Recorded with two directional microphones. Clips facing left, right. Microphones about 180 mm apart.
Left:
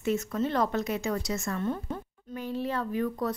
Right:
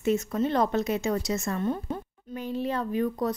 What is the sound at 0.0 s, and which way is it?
A woman's voice, 20° right (ahead or behind).